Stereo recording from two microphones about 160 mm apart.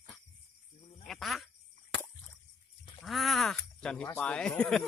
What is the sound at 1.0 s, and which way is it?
Speech, centre (ahead or behind).